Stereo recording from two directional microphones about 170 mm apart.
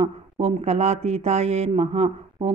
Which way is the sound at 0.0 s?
40° right (ahead or behind).